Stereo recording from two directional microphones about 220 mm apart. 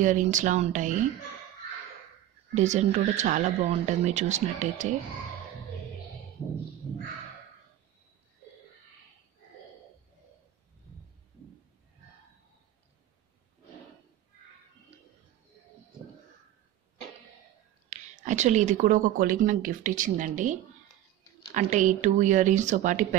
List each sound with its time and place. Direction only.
0.0 s a woman's voice: 35° right (ahead or behind)
2.5 s a woman's voice: 30° right (ahead or behind)
17.8 s a woman's voice: 35° right (ahead or behind)
21.5 s a woman's voice: 35° right (ahead or behind)